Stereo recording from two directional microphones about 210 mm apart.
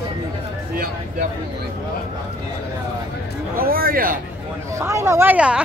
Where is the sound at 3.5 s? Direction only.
45° right (ahead or behind).